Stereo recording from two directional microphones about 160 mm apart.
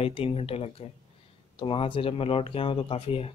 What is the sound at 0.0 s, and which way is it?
Speech, 35° left (ahead or behind).